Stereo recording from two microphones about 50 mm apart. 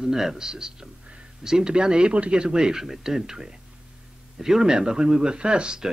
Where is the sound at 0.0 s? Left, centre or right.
Centre.